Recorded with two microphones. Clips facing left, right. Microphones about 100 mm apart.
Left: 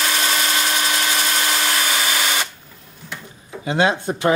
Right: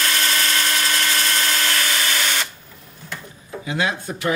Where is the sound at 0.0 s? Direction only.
15° left (ahead or behind).